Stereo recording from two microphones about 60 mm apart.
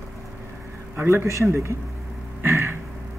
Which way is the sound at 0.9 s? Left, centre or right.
Right.